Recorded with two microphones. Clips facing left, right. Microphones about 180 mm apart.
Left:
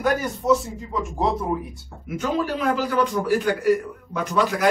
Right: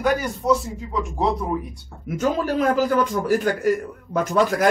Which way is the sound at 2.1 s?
45° right (ahead or behind).